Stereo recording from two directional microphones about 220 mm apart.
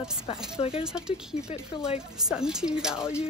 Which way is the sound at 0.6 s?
25° left (ahead or behind).